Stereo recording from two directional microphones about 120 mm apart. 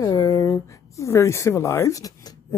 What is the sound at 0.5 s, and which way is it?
Speech, 25° left (ahead or behind).